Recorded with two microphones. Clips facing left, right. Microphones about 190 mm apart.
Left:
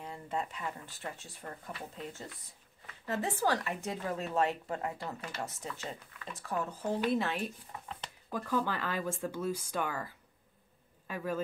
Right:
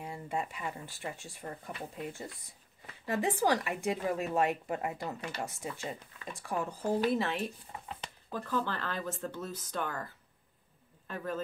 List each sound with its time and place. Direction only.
0.0 s a woman's voice: 10° right (ahead or behind)
7.1 s speech: centre (ahead or behind)
7.7 s a sound: 20° right (ahead or behind)
8.3 s speech: 10° left (ahead or behind)